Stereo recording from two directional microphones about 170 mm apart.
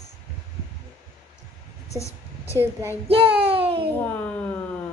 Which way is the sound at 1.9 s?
15° left (ahead or behind).